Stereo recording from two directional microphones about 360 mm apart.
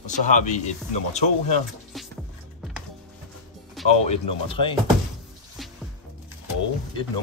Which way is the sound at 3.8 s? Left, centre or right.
Centre.